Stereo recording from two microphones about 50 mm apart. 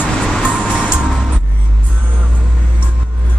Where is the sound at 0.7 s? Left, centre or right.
Centre.